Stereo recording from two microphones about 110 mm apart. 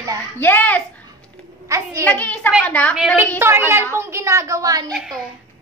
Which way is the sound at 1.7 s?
30° right (ahead or behind).